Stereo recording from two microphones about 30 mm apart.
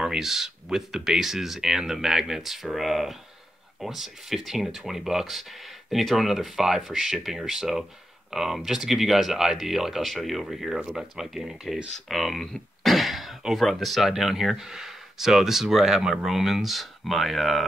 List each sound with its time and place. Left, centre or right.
0.2 s speech: centre
12.1 s a sound: centre
13.6 s speech: centre
16.0 s speech: right
16.3 s speech: centre